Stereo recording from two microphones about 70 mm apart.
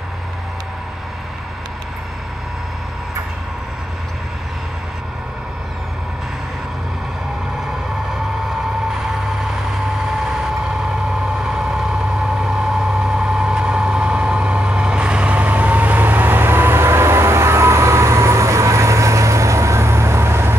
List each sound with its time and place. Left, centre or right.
11.4 s vehicle: centre; by 20.5 s right